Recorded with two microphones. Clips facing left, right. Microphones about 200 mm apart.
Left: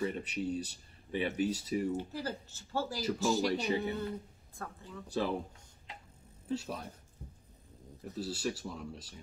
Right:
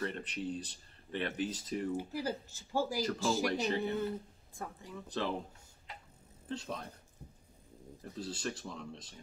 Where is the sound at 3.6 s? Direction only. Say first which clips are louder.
Even; 10° left (ahead or behind).